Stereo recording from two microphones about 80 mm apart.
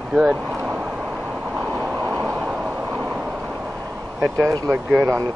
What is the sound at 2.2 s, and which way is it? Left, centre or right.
Vehicle, centre.